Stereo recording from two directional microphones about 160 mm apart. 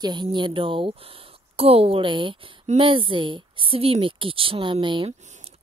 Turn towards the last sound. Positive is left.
turn(degrees=-35)  # may be behind; listen again after turning